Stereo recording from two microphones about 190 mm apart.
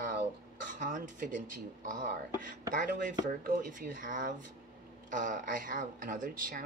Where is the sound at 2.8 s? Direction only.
50° right (ahead or behind).